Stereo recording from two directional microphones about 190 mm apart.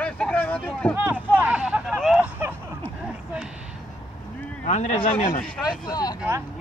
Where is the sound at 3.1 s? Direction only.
5° right (ahead or behind).